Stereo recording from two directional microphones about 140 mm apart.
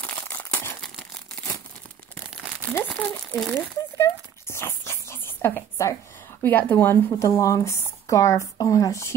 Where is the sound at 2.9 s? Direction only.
10° left (ahead or behind).